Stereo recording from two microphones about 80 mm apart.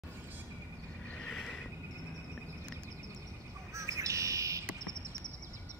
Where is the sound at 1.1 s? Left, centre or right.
Centre.